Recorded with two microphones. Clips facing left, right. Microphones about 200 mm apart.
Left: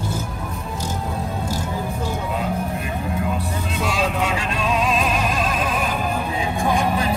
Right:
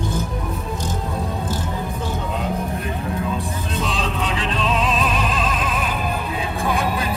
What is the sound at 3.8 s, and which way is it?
Music, 10° left (ahead or behind).